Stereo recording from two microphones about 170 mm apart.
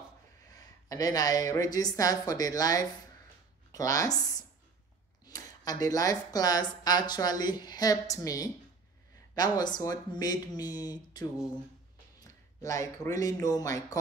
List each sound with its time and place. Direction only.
0.8 s speech: 20° left (ahead or behind)
5.2 s speech: 20° left (ahead or behind)